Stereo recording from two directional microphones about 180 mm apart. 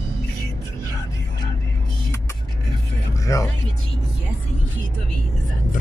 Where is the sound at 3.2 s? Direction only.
15° left (ahead or behind).